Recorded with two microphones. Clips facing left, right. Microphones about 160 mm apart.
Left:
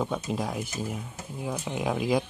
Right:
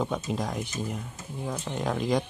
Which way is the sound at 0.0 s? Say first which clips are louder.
Even; centre (ahead or behind).